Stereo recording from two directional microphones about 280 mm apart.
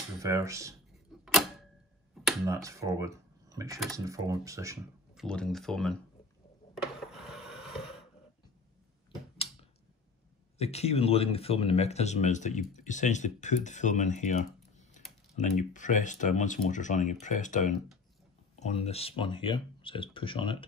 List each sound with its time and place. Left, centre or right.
0.2 s speech: centre
1.1 s a sound: centre
2.2 s speech: centre
5.2 s speech: centre
6.7 s a sound: centre
10.6 s speech: left